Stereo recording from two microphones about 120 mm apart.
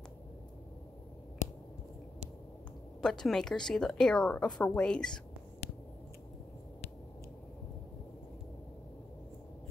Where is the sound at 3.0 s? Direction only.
5° left (ahead or behind).